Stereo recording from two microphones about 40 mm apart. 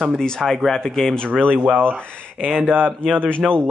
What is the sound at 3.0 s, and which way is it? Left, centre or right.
Speech, left.